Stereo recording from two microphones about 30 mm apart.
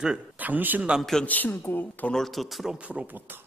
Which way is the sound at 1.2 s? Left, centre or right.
Left.